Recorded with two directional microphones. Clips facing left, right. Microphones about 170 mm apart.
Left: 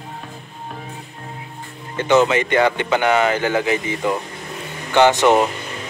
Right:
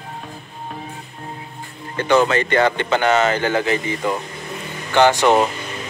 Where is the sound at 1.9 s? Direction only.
20° left (ahead or behind).